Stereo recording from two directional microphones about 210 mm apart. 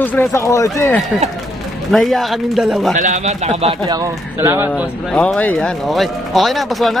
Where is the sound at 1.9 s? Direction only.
Centre (ahead or behind).